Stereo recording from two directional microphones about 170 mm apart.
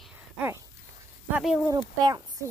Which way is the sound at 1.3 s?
5° right (ahead or behind).